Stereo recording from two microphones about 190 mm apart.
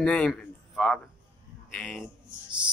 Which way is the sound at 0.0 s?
5° left (ahead or behind).